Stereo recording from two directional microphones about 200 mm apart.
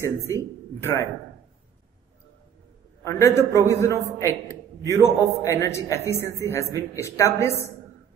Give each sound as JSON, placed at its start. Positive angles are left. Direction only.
{"t": 0.0, "sound": "a man's voice", "side_deg": 15}
{"t": 3.0, "sound": "a man's voice", "side_deg": 15}